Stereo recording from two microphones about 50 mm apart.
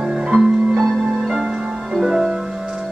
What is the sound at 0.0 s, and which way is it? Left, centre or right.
Music, centre.